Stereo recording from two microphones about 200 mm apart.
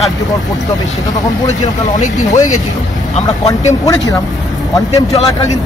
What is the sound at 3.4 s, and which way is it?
Speech, 15° left (ahead or behind).